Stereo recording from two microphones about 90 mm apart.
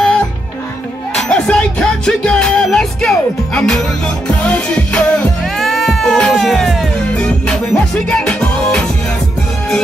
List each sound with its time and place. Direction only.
1.1 s music: 10° left (ahead or behind)
5.4 s speech: centre (ahead or behind)
7.2 s music: 10° left (ahead or behind)